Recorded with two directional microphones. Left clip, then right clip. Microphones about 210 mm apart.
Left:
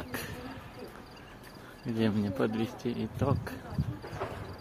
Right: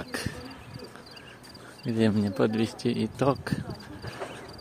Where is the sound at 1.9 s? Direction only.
30° right (ahead or behind).